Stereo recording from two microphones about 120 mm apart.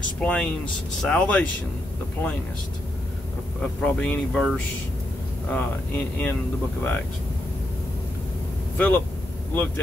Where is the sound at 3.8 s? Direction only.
10° left (ahead or behind).